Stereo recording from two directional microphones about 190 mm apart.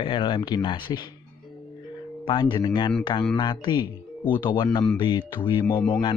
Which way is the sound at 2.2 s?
25° left (ahead or behind).